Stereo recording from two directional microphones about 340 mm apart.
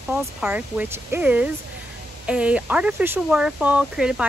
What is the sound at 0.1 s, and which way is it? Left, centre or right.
Speech, centre.